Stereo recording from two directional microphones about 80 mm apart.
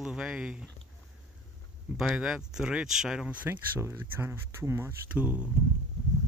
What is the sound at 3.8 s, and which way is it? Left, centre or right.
Speech, right.